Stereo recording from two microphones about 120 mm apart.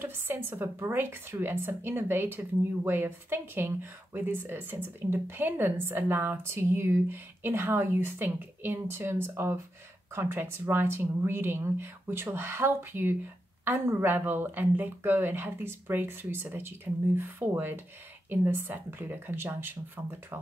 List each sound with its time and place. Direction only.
0.0 s a woman's voice: 20° right (ahead or behind)